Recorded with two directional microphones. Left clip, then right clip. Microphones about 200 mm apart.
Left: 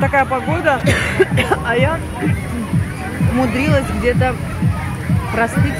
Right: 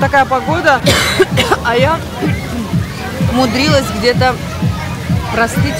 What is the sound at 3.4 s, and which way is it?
Speech, 15° right (ahead or behind).